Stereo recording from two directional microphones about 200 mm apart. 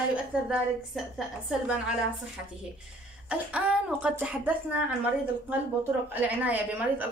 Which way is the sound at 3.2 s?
5° right (ahead or behind).